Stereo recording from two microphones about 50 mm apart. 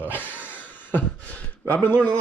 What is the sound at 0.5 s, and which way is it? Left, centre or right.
Beatboxing, left.